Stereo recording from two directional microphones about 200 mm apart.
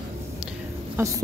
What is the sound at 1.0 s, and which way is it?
Speech, 10° right (ahead or behind).